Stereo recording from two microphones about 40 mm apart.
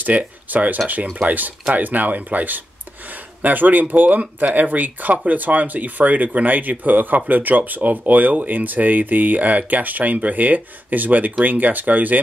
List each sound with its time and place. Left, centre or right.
0.0 s speech: right